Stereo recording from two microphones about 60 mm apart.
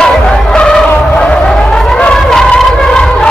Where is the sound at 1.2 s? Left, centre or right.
Centre.